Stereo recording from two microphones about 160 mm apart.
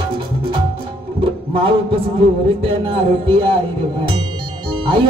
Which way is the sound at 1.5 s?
35° right (ahead or behind).